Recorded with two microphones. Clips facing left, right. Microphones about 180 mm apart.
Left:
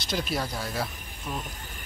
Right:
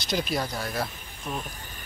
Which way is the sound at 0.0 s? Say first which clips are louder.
Right 2 dB; centre (ahead or behind).